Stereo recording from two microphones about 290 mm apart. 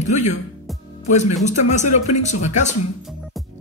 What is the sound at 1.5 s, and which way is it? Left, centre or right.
Speech, left.